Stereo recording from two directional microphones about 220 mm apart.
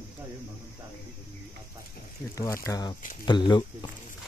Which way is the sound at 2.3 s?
15° left (ahead or behind).